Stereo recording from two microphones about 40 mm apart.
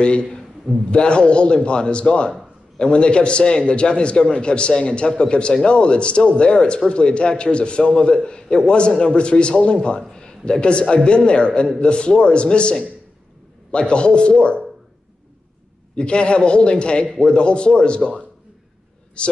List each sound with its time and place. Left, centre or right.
0.0 s a man's voice: left
15.9 s a man's voice: left